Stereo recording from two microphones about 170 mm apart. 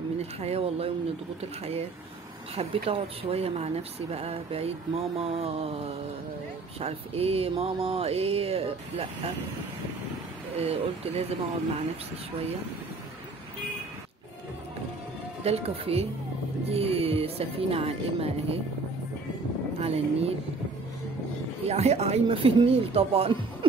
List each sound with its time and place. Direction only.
0.2 s speech: 35° right (ahead or behind)
10.5 s speech: 35° right (ahead or behind)
15.4 s speech: 35° right (ahead or behind)
19.8 s speech: 35° right (ahead or behind)
21.6 s speech: 40° right (ahead or behind)